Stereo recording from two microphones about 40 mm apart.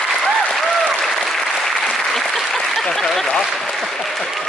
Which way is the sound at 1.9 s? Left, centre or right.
Centre.